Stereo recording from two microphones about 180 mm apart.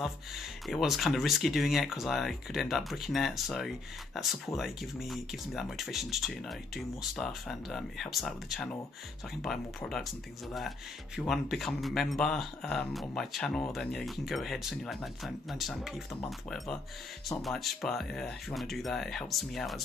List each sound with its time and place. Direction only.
0.7 s speech: centre (ahead or behind)
11.1 s speech: centre (ahead or behind)